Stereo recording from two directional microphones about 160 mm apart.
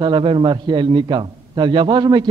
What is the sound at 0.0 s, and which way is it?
A man's voice, 30° right (ahead or behind).